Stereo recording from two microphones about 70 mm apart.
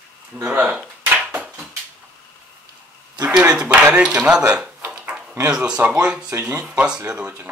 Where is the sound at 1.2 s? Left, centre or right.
Centre.